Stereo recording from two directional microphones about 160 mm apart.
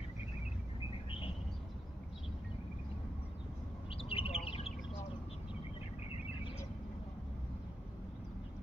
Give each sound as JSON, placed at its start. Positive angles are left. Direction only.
{"t": 3.9, "sound": "bird", "side_deg": 35}